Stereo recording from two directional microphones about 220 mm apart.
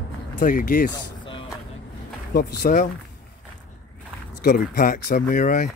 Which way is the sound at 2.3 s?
45° left (ahead or behind).